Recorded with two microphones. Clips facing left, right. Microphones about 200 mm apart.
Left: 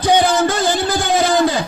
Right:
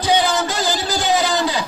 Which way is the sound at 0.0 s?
50° left (ahead or behind).